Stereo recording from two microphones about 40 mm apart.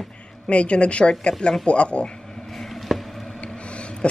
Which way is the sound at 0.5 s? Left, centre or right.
Left.